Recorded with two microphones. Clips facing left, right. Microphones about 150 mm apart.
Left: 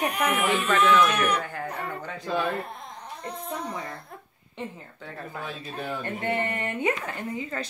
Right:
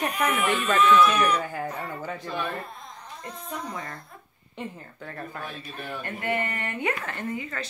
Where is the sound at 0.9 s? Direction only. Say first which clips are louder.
Right 2 dB; 70° left (ahead or behind).